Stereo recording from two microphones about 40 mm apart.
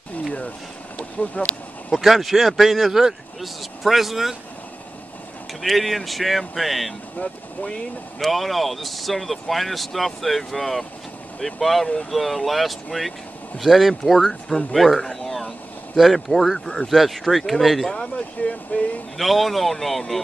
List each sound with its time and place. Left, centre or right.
1.4 s speech: left
1.9 s speech: centre
5.6 s speech: centre
8.2 s speech: centre
14.7 s a sound: centre
16.0 s speech: centre
16.9 s speech: centre
17.8 s speech: centre
18.7 s speech: left
19.1 s speech: centre